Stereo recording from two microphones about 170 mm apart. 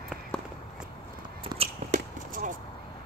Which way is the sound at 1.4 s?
35° right (ahead or behind).